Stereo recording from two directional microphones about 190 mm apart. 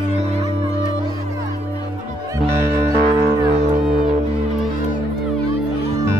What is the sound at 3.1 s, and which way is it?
Music, 20° right (ahead or behind).